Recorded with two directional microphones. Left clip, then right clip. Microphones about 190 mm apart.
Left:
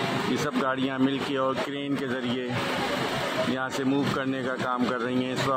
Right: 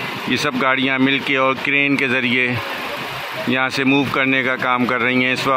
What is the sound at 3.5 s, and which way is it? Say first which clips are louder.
Speech: right 11 dB; 15° right (ahead or behind).